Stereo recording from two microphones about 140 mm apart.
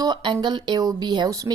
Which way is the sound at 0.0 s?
35° right (ahead or behind).